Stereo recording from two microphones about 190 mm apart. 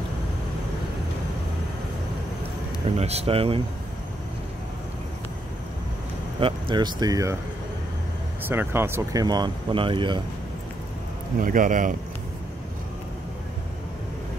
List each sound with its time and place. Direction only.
3.0 s speech: 35° right (ahead or behind)
6.4 s speech: 25° right (ahead or behind)
8.4 s speech: 10° right (ahead or behind)
11.3 s speech: 45° right (ahead or behind)